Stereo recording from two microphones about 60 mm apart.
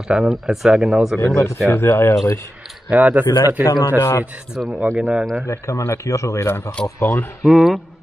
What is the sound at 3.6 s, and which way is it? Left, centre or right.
Speech, left.